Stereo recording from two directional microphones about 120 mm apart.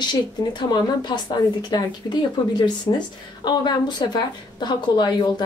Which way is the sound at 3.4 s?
35° left (ahead or behind).